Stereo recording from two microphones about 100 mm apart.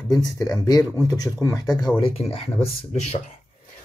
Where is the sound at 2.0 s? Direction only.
90° left.